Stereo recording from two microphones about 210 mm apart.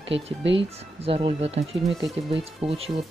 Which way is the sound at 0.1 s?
60° right (ahead or behind).